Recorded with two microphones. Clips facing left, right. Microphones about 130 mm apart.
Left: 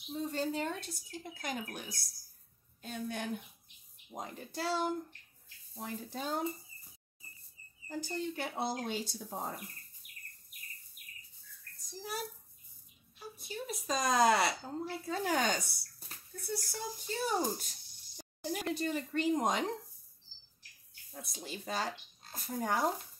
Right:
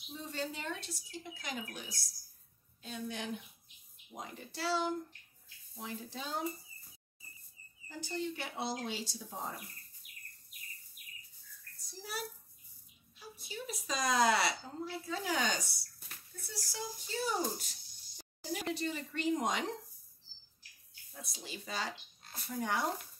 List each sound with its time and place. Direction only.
0.1 s a woman's voice: 45° left (ahead or behind)
7.9 s a woman's voice: 45° left (ahead or behind)
11.8 s a child's voice: 45° left (ahead or behind)
13.2 s a woman's voice: 50° left (ahead or behind)
21.1 s a woman's voice: 45° left (ahead or behind)